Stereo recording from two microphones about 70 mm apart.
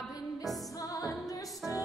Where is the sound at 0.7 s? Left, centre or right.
Left.